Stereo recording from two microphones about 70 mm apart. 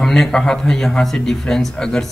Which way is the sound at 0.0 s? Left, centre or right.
Centre.